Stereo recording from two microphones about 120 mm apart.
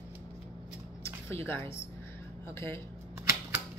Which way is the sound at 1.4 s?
20° left (ahead or behind).